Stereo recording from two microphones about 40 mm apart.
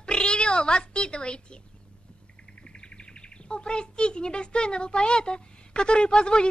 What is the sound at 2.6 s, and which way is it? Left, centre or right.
Speech, left.